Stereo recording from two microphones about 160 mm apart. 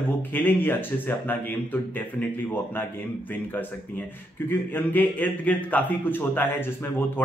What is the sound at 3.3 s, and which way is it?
Speech, 10° left (ahead or behind).